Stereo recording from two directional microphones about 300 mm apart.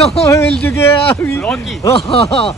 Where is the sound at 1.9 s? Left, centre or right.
Centre.